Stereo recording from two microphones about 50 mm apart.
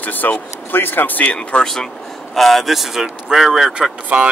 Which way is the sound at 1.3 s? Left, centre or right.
Centre.